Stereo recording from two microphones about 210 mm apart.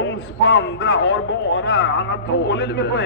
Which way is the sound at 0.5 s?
55° left (ahead or behind).